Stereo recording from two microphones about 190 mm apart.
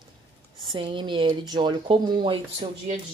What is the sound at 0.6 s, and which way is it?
Speech, 25° right (ahead or behind).